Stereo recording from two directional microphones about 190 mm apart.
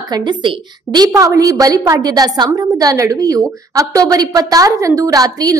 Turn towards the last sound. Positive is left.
turn(degrees=-20)  # may be behind; listen again after turning